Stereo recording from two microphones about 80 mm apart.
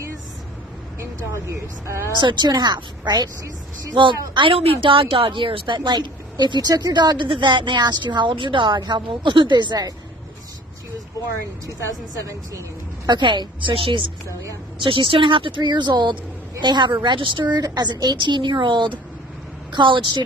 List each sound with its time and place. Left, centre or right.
1.3 s speech: right
2.1 s a woman's voice: right
3.9 s a woman's voice: right
12.3 s speech: right
13.1 s a woman's voice: right
17.6 s a woman's voice: right